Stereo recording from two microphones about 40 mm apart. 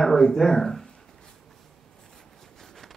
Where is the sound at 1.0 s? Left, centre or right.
Centre.